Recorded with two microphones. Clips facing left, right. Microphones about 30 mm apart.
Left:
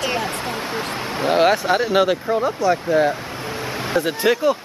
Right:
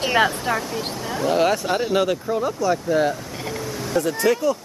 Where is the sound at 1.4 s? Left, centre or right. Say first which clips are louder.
Left 3 dB; left.